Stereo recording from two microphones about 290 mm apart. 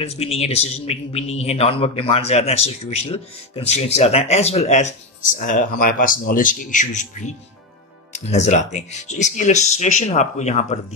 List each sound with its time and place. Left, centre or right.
0.0 s a man's voice: left